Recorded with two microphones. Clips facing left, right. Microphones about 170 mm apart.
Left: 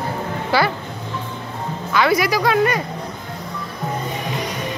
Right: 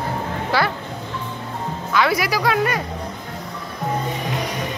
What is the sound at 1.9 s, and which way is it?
Speech, centre (ahead or behind).